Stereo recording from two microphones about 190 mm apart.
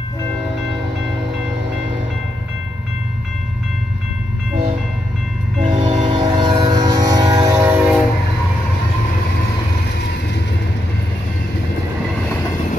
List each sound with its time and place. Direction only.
5.6 s train: 40° right (ahead or behind)
6.0 s train: 25° right (ahead or behind)